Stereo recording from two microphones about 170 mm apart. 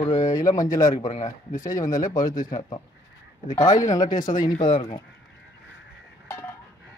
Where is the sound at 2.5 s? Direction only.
30° left (ahead or behind).